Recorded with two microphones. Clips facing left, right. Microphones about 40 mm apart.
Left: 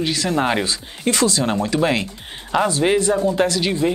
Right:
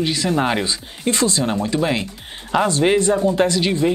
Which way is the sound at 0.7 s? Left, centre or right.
Centre.